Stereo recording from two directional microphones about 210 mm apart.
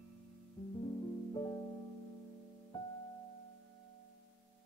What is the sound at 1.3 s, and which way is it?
Music, 20° left (ahead or behind).